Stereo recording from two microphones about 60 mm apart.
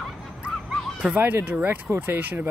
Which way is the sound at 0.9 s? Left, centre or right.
Right.